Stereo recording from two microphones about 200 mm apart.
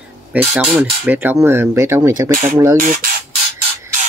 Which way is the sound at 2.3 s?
40° right (ahead or behind).